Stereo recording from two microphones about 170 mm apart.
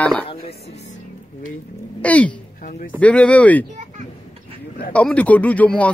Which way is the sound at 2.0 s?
10° left (ahead or behind).